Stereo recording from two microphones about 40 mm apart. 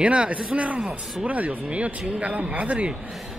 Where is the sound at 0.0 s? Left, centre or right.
Right.